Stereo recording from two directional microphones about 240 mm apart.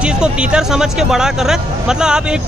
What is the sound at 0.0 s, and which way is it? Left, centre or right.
Speech, centre.